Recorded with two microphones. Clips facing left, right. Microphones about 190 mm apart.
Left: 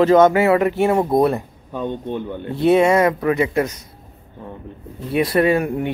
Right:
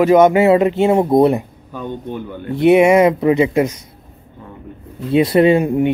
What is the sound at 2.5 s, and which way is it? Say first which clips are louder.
Speech: right 4 dB; 15° right (ahead or behind).